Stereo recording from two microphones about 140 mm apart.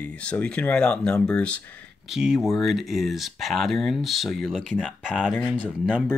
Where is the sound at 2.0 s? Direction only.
5° right (ahead or behind).